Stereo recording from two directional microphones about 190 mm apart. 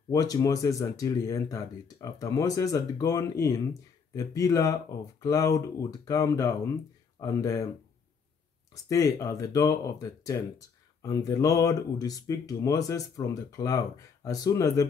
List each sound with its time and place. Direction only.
0.1 s speech: 20° left (ahead or behind)
8.8 s speech: 15° left (ahead or behind)